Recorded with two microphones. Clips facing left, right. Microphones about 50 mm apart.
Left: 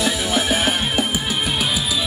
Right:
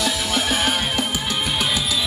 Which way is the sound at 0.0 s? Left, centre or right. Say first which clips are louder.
Left 2 dB; centre.